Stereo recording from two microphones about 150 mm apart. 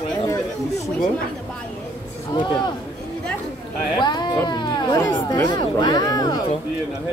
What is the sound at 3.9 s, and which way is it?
Speech, 30° left (ahead or behind).